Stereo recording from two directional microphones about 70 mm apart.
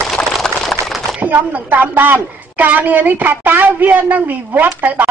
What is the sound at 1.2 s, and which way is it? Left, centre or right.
A woman's voice, right.